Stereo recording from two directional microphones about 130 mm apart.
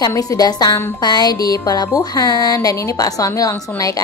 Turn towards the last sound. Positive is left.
turn(degrees=25)  # may be behind; listen again after turning